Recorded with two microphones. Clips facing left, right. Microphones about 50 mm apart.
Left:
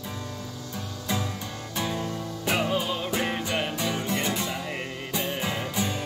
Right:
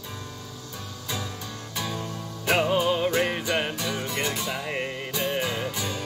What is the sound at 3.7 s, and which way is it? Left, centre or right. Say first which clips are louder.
Music: left 1 dB; centre.